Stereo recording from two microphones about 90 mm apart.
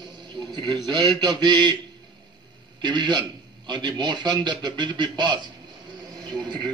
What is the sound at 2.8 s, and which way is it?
A man's voice, 55° right (ahead or behind).